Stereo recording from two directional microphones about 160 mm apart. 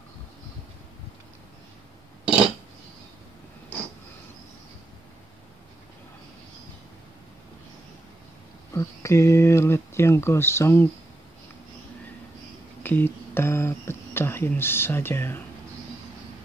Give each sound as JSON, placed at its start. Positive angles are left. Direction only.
{"t": 8.7, "sound": "speech", "side_deg": 20}
{"t": 12.8, "sound": "speech", "side_deg": 10}